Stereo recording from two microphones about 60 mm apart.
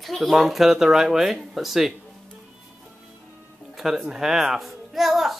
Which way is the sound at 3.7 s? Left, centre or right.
Centre.